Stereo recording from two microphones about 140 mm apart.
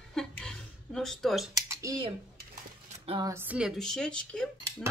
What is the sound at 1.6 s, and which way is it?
Speech, 25° right (ahead or behind).